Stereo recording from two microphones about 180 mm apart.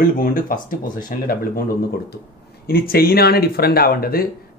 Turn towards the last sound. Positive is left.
turn(degrees=55)  # may be behind; listen again after turning